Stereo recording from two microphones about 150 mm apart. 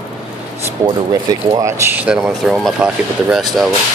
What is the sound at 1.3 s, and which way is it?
Speech, 25° right (ahead or behind).